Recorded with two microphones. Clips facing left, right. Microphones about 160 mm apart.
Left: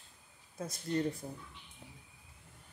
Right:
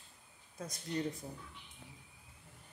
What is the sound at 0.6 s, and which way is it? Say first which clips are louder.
Speech: left 4 dB; centre (ahead or behind).